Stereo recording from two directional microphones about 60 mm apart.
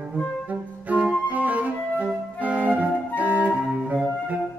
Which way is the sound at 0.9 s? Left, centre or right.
Right.